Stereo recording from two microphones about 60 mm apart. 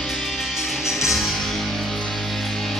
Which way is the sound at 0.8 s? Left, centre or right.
Centre.